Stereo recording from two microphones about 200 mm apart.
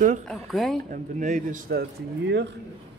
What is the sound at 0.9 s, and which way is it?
Speech, 40° right (ahead or behind).